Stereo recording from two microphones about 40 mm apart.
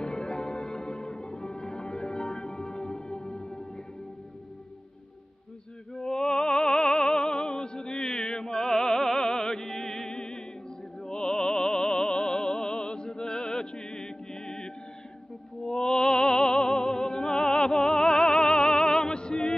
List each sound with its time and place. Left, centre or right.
0.0 s music: centre
5.9 s music: centre
11.0 s opera: centre
15.6 s music: centre